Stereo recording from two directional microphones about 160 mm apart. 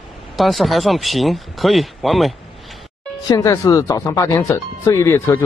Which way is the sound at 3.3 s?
20° left (ahead or behind).